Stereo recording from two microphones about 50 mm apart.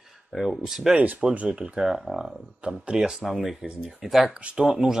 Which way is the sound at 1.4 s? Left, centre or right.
Centre.